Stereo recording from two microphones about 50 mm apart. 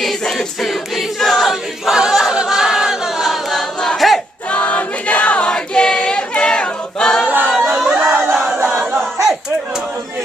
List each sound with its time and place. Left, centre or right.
1.2 s choir: centre
1.5 s choir: centre
3.5 s choir: centre
4.5 s choir: left; by 7.2 s centre
7.5 s crowd: centre
8.6 s battle cry: centre